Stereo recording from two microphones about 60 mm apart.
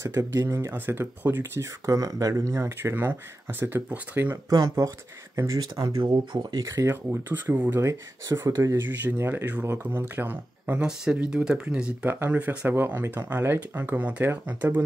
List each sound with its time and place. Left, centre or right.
0.0 s speech: right
0.7 s speech: right
1.6 s speech: right
2.8 s speech: right
4.5 s speech: right
5.5 s speech: right
6.7 s speech: right
7.8 s speech: right
8.7 s speech: right
10.8 s speech: centre; by 14.8 s right